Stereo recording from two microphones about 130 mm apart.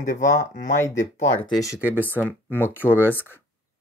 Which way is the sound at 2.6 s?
15° left (ahead or behind).